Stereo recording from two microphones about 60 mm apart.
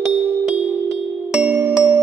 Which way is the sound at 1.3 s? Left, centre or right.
Right.